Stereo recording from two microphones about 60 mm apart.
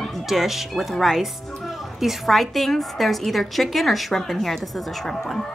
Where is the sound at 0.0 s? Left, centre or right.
Centre.